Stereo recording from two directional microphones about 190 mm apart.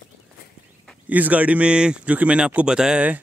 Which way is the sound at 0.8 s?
10° right (ahead or behind).